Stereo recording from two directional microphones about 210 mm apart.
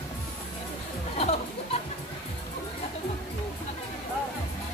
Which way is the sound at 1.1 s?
30° left (ahead or behind).